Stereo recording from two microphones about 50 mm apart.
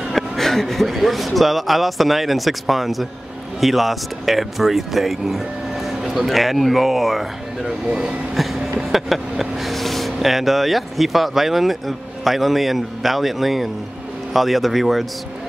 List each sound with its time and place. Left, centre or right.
0.1 s a man's voice: centre
7.9 s speech: centre
8.4 s vehicle: centre
12.3 s a man's voice: centre